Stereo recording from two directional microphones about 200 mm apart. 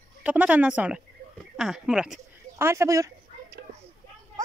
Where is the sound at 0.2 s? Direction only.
10° right (ahead or behind).